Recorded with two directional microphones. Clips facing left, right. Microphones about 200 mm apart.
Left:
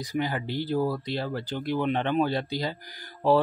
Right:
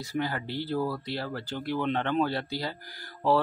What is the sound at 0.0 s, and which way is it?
Speech, 15° left (ahead or behind).